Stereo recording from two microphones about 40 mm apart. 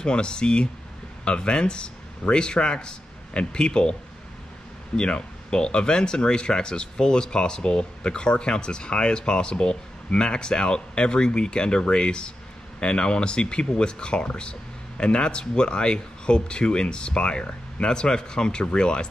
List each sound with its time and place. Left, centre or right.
0.0 s a man's voice: left
4.9 s speech: left